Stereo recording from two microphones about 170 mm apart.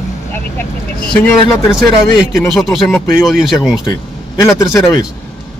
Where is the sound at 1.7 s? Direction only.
5° right (ahead or behind).